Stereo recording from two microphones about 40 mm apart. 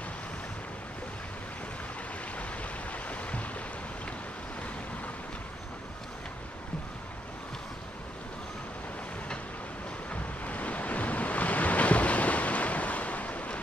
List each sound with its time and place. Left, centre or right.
2.9 s waves: left
10.4 s waves: left